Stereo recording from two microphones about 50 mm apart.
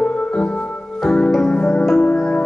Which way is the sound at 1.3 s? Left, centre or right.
Centre.